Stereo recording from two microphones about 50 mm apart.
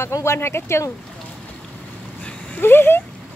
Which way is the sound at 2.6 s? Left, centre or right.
Left.